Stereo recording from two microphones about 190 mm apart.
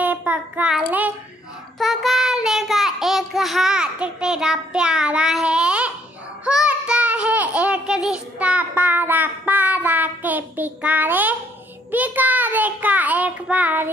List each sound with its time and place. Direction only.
0.0 s child singing: 10° right (ahead or behind)